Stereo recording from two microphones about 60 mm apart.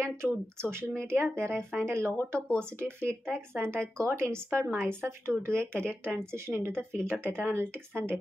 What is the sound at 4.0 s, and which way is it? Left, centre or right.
Speech, right.